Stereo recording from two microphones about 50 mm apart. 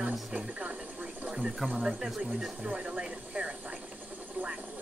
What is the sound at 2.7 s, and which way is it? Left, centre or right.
Speech, right.